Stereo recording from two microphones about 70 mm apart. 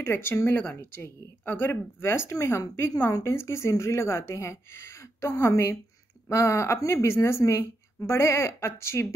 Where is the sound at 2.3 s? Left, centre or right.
Left.